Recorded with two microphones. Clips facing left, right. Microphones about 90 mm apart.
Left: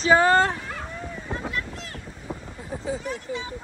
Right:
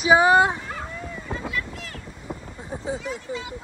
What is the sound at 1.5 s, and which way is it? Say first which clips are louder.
Boat: right 1 dB; 35° left (ahead or behind).